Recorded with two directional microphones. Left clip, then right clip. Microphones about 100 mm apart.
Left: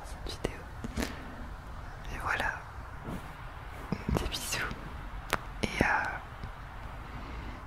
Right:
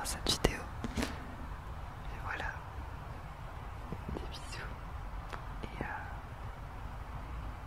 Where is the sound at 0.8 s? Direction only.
5° left (ahead or behind).